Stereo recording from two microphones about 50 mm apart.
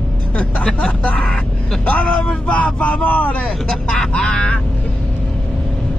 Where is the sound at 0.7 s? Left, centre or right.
Left.